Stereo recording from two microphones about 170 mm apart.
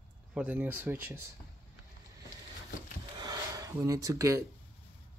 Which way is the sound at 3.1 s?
25° right (ahead or behind).